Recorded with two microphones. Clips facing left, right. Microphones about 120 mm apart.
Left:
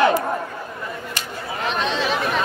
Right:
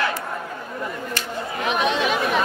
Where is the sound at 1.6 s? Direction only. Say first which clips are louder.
Right 1 dB; 10° right (ahead or behind).